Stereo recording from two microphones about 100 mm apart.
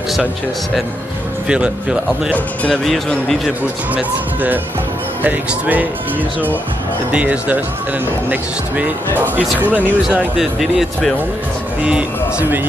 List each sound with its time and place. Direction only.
1.5 s speech: 10° right (ahead or behind)
2.7 s speech: 5° left (ahead or behind)
3.9 s speech: 15° right (ahead or behind)
7.1 s speech: 15° right (ahead or behind)
10.0 s speech: 5° right (ahead or behind)